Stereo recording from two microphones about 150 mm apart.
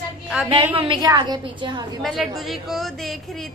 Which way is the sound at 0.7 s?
35° right (ahead or behind).